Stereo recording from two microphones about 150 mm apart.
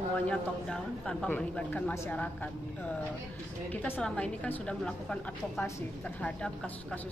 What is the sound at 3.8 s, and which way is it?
A man's voice, 10° left (ahead or behind).